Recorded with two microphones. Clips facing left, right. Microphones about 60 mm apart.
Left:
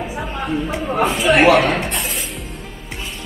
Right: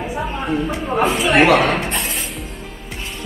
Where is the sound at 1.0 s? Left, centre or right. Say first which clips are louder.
Left 1 dB; centre.